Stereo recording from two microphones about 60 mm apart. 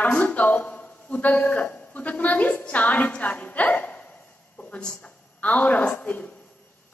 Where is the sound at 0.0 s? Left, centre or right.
Left.